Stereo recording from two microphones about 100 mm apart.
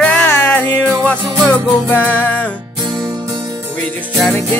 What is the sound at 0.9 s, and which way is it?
Music, 5° left (ahead or behind).